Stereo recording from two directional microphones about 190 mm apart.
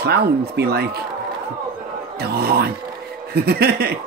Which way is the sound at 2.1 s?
55° right (ahead or behind).